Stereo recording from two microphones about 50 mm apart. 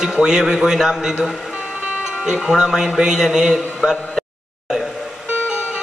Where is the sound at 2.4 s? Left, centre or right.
Centre.